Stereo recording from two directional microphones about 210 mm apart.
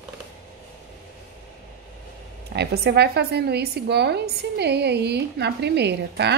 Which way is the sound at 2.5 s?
50° right (ahead or behind).